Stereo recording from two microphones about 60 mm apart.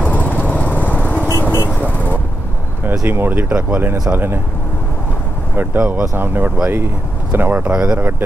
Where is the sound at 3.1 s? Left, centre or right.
Right.